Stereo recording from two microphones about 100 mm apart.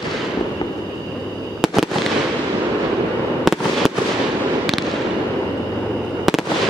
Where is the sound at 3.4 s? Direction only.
Centre (ahead or behind).